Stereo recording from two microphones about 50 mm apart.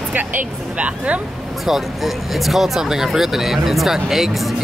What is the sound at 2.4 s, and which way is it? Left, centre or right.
Speech, centre.